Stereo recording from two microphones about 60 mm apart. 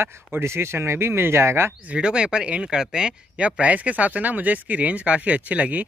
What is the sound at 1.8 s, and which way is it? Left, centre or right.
Speech, centre.